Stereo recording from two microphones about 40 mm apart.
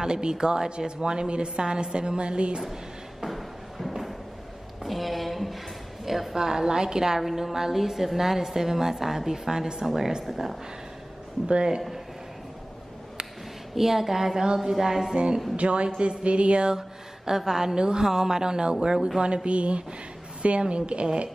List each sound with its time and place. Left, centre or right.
0.0 s a woman's voice: centre
2.6 s a sound: centre
6.0 s a woman's voice: centre
6.3 s a woman's voice: centre
7.2 s a woman's voice: centre
11.4 s a woman's voice: right
13.7 s a woman's voice: centre; by 21.3 s right